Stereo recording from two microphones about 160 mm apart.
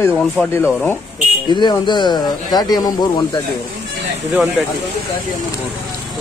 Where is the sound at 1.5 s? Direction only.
30° left (ahead or behind).